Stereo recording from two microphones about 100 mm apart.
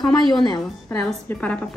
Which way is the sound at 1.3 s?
15° left (ahead or behind).